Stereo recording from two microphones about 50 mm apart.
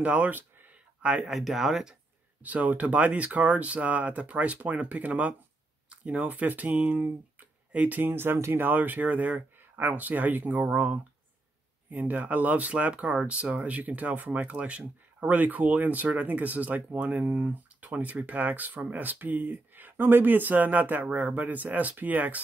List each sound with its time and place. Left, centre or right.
0.0 s speech: right
0.4 s a sound: right
1.2 s speech: centre
2.4 s speech: right
8.0 s speech: right
8.6 s speech: right